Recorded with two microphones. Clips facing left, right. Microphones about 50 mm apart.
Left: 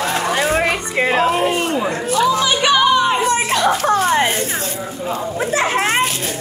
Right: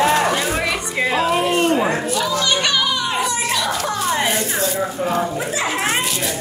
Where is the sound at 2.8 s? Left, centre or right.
Left.